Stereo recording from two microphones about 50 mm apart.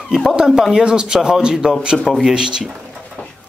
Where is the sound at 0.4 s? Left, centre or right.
Centre.